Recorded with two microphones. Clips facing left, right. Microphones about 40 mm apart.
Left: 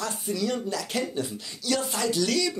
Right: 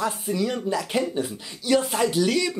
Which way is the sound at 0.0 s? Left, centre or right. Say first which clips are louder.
Right 4 dB; centre.